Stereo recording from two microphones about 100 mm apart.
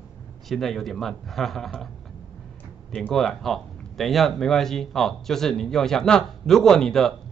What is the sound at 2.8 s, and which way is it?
Speech, 5° left (ahead or behind).